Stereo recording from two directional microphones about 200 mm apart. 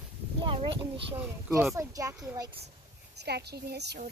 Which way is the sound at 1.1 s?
5° right (ahead or behind).